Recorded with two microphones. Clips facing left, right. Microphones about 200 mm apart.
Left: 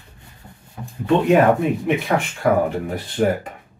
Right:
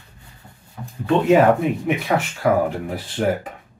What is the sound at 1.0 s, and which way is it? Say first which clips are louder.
Speech: even; 5° right (ahead or behind).